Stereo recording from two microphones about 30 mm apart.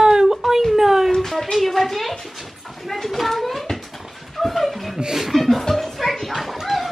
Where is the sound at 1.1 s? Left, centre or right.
Centre.